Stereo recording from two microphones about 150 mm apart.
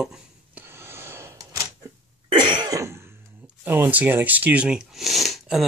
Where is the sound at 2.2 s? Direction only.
30° right (ahead or behind).